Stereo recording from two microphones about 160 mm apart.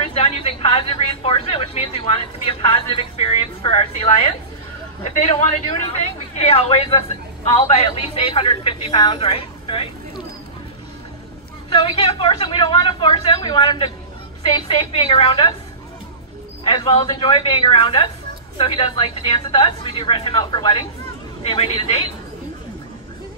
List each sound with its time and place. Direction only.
0.0 s a woman's voice: 35° left (ahead or behind)
11.7 s a woman's voice: 35° left (ahead or behind)
16.6 s a woman's voice: 35° left (ahead or behind)